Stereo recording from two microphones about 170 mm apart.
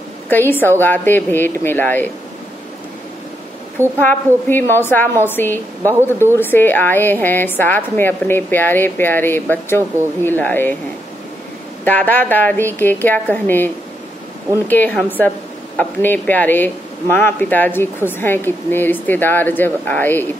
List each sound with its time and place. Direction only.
0.3 s speech: 10° left (ahead or behind)
4.0 s speech: 10° left (ahead or behind)
11.8 s speech: 10° left (ahead or behind)
14.7 s speech: 10° left (ahead or behind)